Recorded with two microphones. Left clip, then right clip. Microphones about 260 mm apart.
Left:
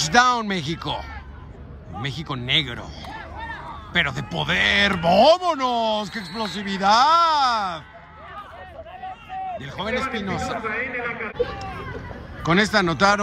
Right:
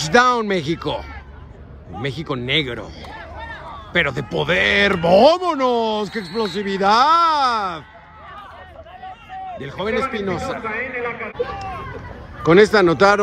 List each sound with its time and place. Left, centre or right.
0.0 s a man's voice: centre
3.2 s a sound: left
3.6 s a man's voice: centre
9.6 s a man's voice: centre
10.6 s a man's voice: centre
12.4 s a man's voice: centre